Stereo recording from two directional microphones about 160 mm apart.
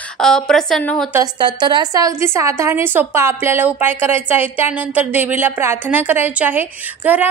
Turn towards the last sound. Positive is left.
turn(degrees=-10)  # may be behind; listen again after turning